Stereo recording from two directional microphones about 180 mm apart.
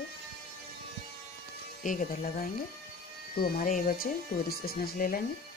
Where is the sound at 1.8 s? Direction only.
45° left (ahead or behind).